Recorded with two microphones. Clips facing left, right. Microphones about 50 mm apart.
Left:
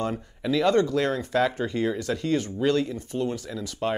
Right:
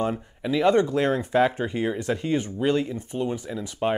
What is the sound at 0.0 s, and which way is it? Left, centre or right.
Speech, centre.